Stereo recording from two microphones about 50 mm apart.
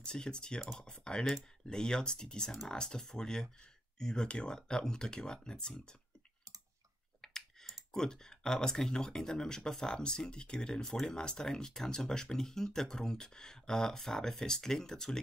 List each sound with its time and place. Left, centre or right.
0.0 s speech: centre
7.2 s speech: centre